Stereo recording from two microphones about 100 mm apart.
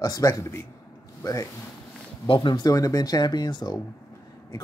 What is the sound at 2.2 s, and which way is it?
Speech, 55° left (ahead or behind).